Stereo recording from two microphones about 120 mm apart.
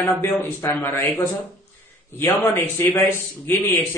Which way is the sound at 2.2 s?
20° left (ahead or behind).